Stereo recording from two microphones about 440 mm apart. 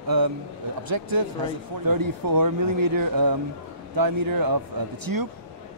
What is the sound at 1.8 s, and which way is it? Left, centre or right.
Speech, right.